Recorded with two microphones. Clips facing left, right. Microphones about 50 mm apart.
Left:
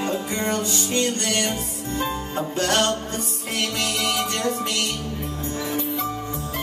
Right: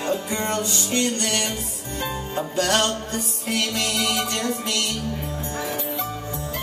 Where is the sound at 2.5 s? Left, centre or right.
Left.